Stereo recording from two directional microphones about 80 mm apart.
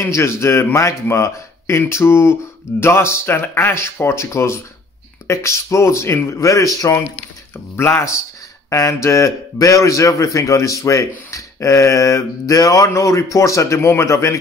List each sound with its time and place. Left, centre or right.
0.0 s speech: left
7.5 s speech: left